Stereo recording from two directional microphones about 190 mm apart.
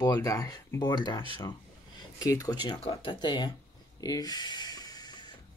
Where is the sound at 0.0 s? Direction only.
20° left (ahead or behind).